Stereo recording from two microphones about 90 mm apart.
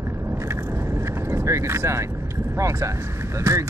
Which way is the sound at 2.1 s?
25° right (ahead or behind).